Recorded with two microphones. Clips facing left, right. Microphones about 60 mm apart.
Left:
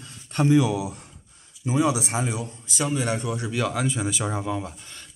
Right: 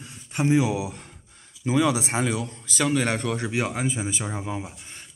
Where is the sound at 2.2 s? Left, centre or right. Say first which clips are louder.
Right 2 dB; right.